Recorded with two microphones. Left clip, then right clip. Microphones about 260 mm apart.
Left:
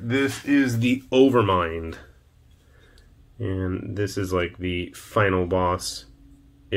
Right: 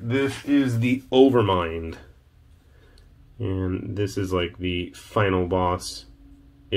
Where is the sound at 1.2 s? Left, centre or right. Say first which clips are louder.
Even; centre.